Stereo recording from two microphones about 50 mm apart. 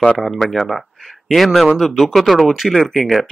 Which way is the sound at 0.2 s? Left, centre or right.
Centre.